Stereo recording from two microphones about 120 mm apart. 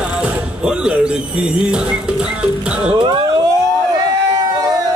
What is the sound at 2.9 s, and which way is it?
Speech, 45° right (ahead or behind).